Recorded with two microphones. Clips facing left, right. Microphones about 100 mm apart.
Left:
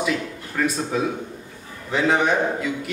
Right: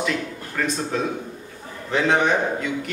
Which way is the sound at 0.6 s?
5° left (ahead or behind).